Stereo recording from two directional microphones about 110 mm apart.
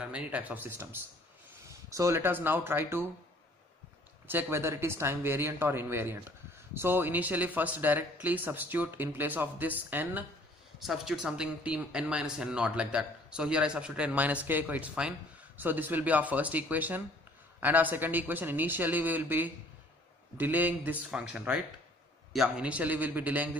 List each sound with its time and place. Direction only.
0.0 s a woman's voice: 10° right (ahead or behind)
4.3 s a woman's voice: 20° right (ahead or behind)
10.8 s a woman's voice: 5° right (ahead or behind)